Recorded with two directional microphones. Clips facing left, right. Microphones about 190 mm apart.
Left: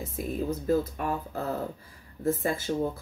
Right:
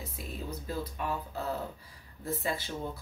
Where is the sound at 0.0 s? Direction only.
50° left (ahead or behind).